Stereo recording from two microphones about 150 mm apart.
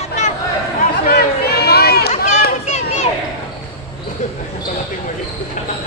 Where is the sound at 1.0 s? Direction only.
90° left.